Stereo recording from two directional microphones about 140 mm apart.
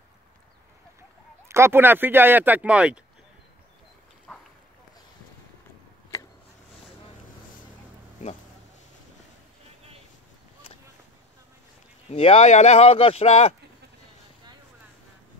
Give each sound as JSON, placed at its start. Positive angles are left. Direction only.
{"t": 1.5, "sound": "speech", "side_deg": -15}
{"t": 4.3, "sound": "a sound", "side_deg": 5}
{"t": 12.1, "sound": "speech", "side_deg": 45}